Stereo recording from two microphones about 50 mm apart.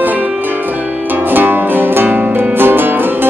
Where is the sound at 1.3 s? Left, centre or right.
Right.